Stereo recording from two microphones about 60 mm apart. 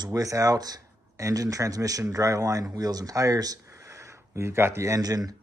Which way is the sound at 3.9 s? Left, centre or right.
Right.